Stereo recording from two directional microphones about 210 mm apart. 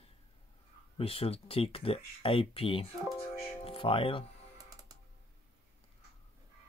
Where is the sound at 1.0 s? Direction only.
25° left (ahead or behind).